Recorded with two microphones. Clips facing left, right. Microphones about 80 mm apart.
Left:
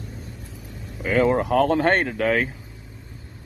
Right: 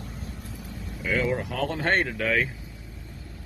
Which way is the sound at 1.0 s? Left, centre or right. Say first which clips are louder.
Left 7 dB; left.